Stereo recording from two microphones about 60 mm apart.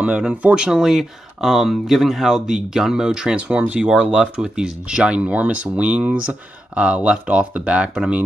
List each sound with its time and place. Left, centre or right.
0.0 s speech: centre
0.7 s speech: centre